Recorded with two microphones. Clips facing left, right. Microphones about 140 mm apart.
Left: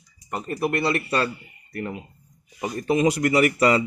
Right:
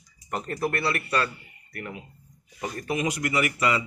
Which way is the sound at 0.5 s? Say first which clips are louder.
Left 5 dB; 20° left (ahead or behind).